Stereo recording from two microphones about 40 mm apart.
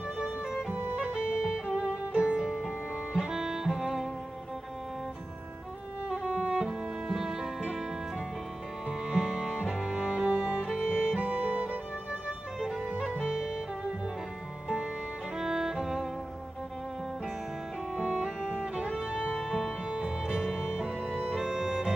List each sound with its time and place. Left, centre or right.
0.2 s music: centre
6.0 s music: right
6.6 s music: centre
8.8 s music: centre
11.1 s music: right
12.5 s music: centre
15.3 s music: centre
18.0 s music: centre
19.3 s music: centre